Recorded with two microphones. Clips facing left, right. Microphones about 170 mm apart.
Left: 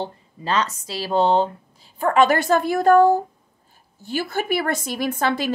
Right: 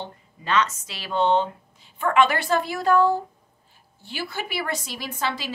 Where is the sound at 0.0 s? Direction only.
35° left (ahead or behind).